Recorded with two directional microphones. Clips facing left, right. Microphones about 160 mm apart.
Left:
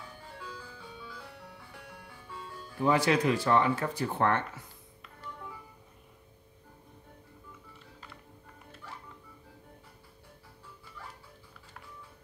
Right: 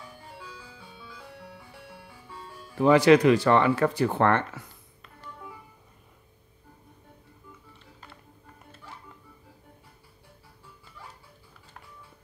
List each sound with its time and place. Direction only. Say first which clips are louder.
2.8 s speech: right 8 dB; 85° right